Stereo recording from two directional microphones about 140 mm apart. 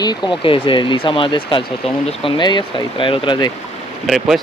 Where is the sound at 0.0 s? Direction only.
30° left (ahead or behind).